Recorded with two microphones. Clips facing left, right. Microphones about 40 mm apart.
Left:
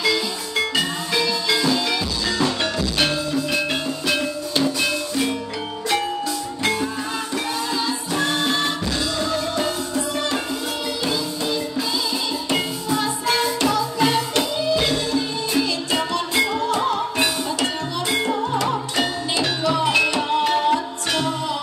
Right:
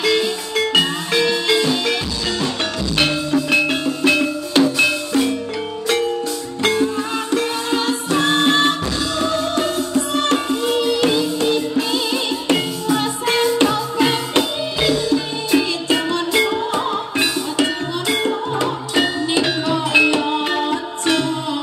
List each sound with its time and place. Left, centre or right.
0.0 s music: right
1.5 s music: right
3.1 s music: centre
4.0 s music: right
6.6 s music: right
7.2 s music: right; by 16.9 s centre
18.1 s music: right